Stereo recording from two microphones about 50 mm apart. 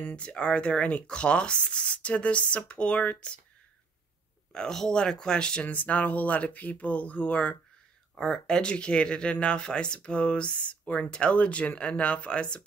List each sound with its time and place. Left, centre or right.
0.1 s speech: left
4.5 s speech: centre
5.7 s speech: left
8.1 s speech: centre